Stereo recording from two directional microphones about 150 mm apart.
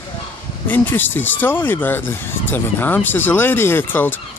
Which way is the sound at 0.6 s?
10° left (ahead or behind).